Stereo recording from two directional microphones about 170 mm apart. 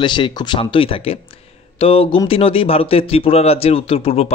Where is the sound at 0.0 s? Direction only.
25° left (ahead or behind).